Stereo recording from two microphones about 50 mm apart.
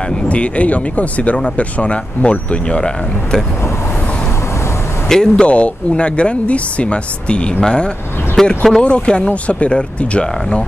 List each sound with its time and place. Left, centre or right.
0.3 s speech: left
5.0 s speech: centre
5.3 s speech: left
8.4 s speech: centre
8.8 s speech: left